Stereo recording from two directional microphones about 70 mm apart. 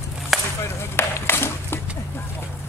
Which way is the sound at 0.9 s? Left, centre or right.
Left.